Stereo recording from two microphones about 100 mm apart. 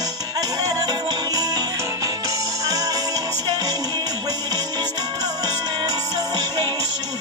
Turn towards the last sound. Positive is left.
turn(degrees=-50)  # may be behind; listen again after turning